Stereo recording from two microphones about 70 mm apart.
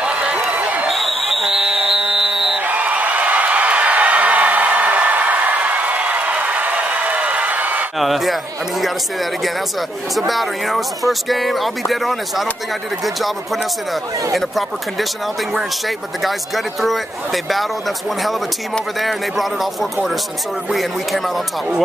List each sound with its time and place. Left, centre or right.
0.0 s a sound: centre
0.8 s buzzer: centre
2.6 s a sound: right
8.0 s speech: centre
10.1 s speech: centre
14.3 s speech: centre
16.2 s speech: centre
18.9 s speech: centre